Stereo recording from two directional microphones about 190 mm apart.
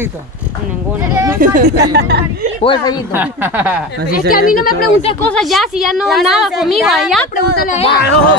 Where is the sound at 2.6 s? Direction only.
25° left (ahead or behind).